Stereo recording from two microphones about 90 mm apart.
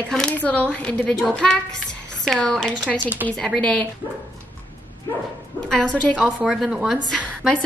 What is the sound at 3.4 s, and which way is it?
Speech, 10° left (ahead or behind).